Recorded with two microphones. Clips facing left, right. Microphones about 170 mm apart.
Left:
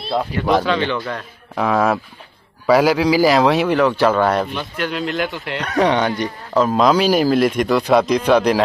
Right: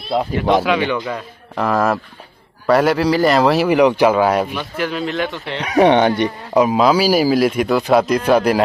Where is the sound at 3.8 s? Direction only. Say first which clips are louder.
Right 3 dB; 15° right (ahead or behind).